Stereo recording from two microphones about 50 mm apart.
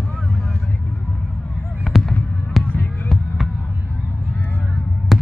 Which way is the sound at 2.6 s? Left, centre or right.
Centre.